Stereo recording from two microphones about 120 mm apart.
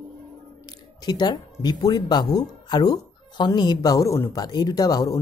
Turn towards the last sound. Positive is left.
turn(degrees=30)  # may be behind; listen again after turning